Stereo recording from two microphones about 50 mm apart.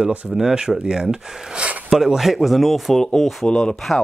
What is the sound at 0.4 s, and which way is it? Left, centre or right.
Speech, centre.